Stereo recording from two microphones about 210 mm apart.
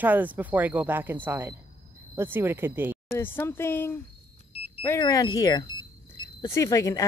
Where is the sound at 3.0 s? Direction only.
10° left (ahead or behind).